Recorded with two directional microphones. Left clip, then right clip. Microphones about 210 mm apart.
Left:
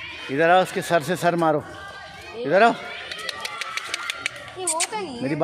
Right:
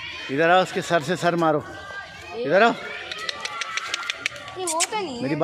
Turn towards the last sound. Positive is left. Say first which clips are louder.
# right 2 dB
turn(degrees=-20)  # may be behind; listen again after turning